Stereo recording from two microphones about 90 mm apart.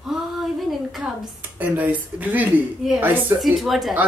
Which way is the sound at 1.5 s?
20° right (ahead or behind).